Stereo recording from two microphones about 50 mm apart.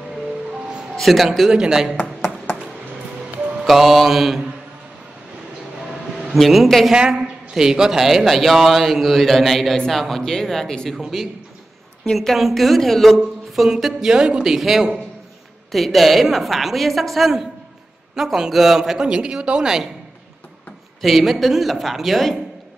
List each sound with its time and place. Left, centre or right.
0.9 s a woman's voice: centre
1.5 s speech: centre
2.0 s a sound: left
3.5 s a woman's voice: centre
6.3 s a woman's voice: centre
6.9 s a woman's voice: centre
21.0 s a woman's voice: centre